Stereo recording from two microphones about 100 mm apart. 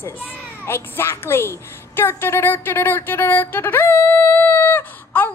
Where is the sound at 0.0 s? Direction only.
25° left (ahead or behind).